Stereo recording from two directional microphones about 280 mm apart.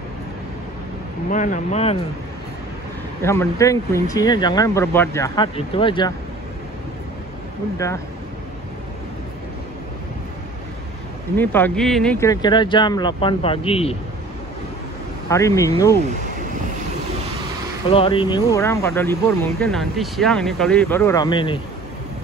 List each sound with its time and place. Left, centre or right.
1.3 s speech: left
3.2 s speech: centre
7.7 s speech: centre
11.3 s speech: centre
15.2 s speech: centre
17.8 s speech: centre